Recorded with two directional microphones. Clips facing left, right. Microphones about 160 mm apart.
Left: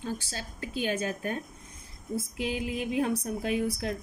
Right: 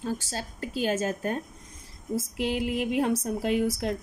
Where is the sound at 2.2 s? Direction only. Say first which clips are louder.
Right 4 dB; 75° right (ahead or behind).